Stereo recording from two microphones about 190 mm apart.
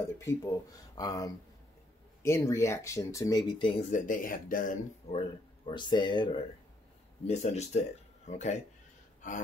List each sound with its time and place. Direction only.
0.0 s speech: 15° left (ahead or behind); by 5.2 s 45° left (ahead or behind)
5.7 s speech: 25° left (ahead or behind)
7.2 s speech: 35° left (ahead or behind)